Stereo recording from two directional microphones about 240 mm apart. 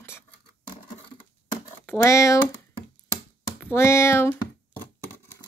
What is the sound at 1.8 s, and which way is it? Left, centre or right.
Speech, centre.